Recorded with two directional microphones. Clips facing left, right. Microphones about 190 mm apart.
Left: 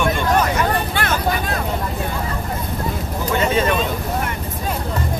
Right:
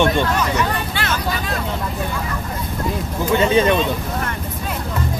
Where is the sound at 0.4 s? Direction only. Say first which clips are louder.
Left 2 dB; 50° left (ahead or behind).